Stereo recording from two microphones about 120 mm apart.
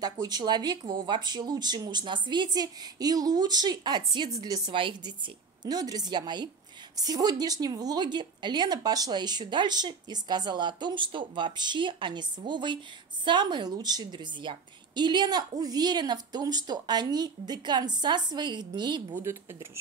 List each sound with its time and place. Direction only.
0.0 s a woman's voice: 35° right (ahead or behind)
5.6 s a woman's voice: 30° right (ahead or behind)